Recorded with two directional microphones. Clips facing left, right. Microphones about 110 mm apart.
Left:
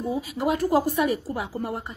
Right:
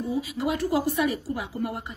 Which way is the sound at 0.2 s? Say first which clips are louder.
Left 2 dB; 45° left (ahead or behind).